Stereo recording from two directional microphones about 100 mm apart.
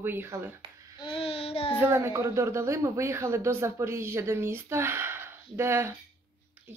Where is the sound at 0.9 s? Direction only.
55° left (ahead or behind).